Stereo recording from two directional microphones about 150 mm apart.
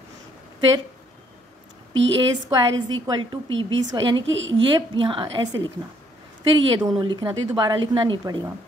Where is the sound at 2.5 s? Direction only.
25° right (ahead or behind).